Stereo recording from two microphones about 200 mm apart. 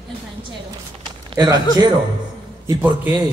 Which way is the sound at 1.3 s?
20° right (ahead or behind).